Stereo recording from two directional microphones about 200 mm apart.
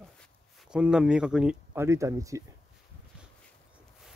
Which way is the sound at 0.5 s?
5° right (ahead or behind).